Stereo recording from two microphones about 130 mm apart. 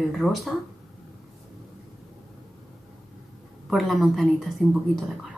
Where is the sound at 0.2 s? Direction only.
5° left (ahead or behind).